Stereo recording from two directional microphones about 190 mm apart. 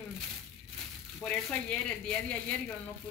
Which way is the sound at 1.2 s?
5° left (ahead or behind).